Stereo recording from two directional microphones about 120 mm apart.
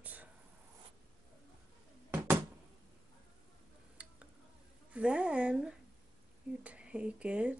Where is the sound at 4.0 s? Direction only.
10° right (ahead or behind).